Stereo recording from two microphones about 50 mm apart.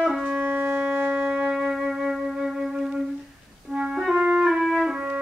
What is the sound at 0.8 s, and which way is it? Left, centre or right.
Music, right.